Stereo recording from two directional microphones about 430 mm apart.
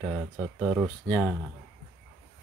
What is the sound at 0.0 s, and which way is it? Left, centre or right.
Speech, centre.